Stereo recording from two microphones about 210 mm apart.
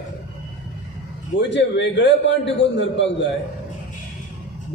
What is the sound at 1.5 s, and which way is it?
A man's voice, 55° left (ahead or behind).